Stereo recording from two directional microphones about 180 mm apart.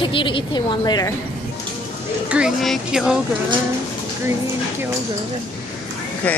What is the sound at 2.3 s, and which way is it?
Speech, centre (ahead or behind).